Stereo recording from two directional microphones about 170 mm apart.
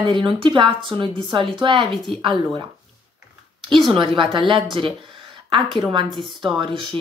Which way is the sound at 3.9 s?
30° right (ahead or behind).